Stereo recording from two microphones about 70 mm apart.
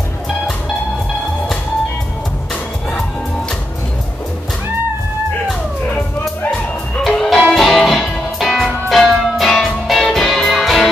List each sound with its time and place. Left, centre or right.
7.0 s music: centre